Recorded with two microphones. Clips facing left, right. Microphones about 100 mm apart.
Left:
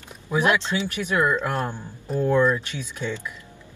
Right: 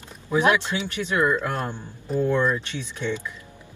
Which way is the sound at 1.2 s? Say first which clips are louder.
Right 2 dB; 15° left (ahead or behind).